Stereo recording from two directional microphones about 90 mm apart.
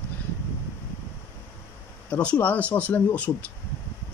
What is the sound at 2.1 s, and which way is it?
Speech, 15° left (ahead or behind).